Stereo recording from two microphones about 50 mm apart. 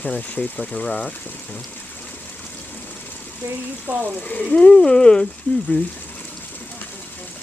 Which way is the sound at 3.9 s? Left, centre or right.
Right.